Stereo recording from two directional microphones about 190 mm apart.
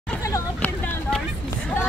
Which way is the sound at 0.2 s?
15° left (ahead or behind).